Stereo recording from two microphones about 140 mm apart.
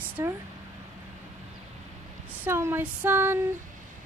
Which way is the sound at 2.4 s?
15° right (ahead or behind).